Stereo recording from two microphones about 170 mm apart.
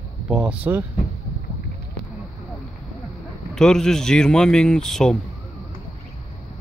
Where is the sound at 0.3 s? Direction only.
5° right (ahead or behind).